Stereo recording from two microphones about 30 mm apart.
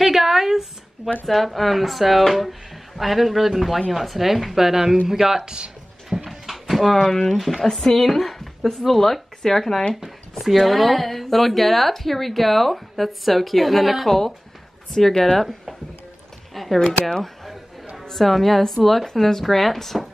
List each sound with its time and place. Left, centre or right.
0.0 s a sound: centre
1.2 s a woman's voice: centre
6.2 s a sound: centre
7.1 s speech: centre
14.0 s speech: centre
16.5 s speech: centre
18.1 s speech: centre